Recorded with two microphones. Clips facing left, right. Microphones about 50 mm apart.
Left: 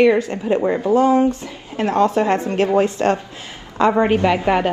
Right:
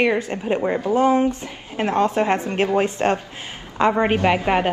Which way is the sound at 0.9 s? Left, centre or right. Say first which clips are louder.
Left 2 dB; right.